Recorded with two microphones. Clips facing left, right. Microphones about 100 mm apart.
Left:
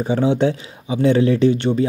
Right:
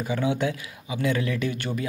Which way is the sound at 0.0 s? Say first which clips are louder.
Left 8 dB; 30° left (ahead or behind).